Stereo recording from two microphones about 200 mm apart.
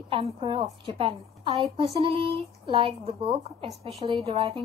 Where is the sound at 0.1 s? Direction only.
25° right (ahead or behind).